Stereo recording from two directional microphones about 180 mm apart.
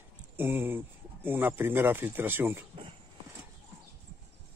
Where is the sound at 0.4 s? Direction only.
10° right (ahead or behind).